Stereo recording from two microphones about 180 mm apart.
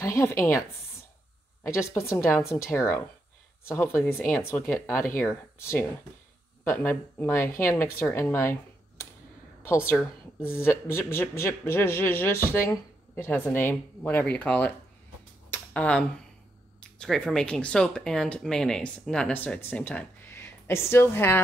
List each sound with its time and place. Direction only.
0.0 s a woman's voice: 15° left (ahead or behind)
9.7 s a woman's voice: 15° left (ahead or behind)
15.5 s a sound: 5° left (ahead or behind)
17.0 s speech: 5° left (ahead or behind)